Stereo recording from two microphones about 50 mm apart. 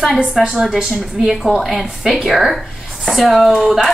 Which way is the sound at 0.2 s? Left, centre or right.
Centre.